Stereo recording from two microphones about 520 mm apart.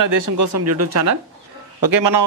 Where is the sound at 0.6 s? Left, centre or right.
Right.